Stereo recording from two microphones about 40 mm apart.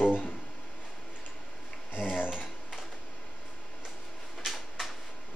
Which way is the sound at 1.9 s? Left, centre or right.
Left.